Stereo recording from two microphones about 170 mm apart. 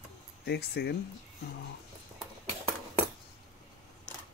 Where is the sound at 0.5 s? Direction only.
75° left (ahead or behind).